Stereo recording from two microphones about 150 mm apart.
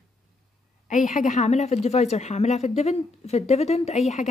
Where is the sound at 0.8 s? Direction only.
55° left (ahead or behind).